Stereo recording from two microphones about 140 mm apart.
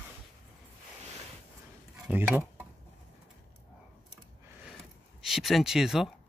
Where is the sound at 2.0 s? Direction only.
10° right (ahead or behind).